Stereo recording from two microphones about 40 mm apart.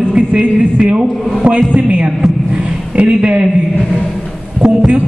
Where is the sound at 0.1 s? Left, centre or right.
Right.